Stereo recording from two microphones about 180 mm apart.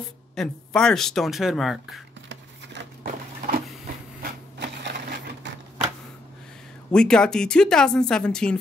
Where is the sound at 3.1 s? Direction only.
50° right (ahead or behind).